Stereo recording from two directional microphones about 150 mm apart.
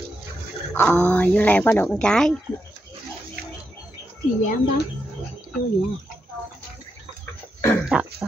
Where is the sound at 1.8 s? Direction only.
5° left (ahead or behind).